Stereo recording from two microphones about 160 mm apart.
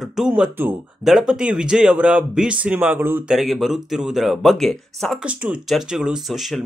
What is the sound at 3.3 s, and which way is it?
Speech, centre (ahead or behind).